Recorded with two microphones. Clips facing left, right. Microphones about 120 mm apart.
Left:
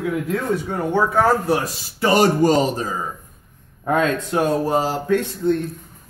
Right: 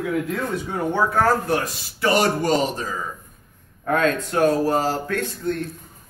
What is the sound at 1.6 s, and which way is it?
Speech, 35° left (ahead or behind).